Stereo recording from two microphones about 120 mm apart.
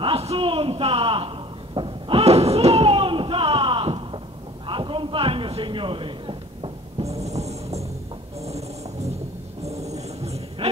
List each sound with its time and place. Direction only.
0.0 s a sound: 55° right (ahead or behind)
7.1 s music: 65° right (ahead or behind)
8.5 s snoring: 60° right (ahead or behind)
9.7 s music: 65° right (ahead or behind)